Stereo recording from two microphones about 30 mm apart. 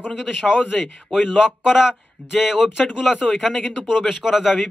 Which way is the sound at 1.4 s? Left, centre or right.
Centre.